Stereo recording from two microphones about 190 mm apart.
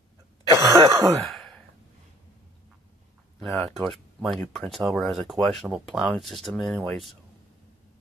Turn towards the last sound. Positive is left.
turn(degrees=0)  # may be behind; listen again after turning